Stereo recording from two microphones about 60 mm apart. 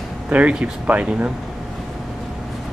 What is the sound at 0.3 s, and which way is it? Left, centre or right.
Speech, right.